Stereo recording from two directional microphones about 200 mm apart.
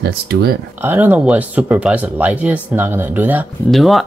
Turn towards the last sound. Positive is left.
turn(degrees=0)  # may be behind; listen again after turning